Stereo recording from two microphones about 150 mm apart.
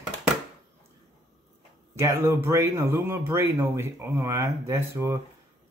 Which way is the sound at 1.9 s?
20° right (ahead or behind).